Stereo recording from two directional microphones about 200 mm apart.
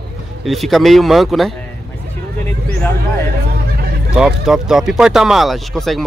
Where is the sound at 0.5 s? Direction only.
Centre (ahead or behind).